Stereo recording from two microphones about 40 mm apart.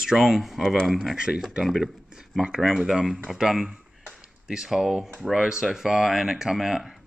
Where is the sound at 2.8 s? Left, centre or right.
Centre.